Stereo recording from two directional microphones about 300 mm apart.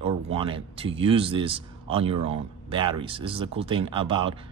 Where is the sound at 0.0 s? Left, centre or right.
Centre.